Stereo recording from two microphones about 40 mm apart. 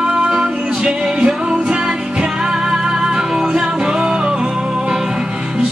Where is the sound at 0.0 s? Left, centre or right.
Right.